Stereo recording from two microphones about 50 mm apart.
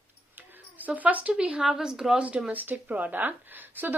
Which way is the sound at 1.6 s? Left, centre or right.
Centre.